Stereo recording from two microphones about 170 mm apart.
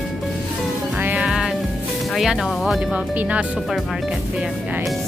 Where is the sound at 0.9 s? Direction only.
10° right (ahead or behind).